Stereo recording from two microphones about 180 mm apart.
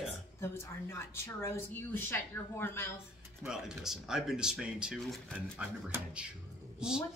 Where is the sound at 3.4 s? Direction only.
5° right (ahead or behind).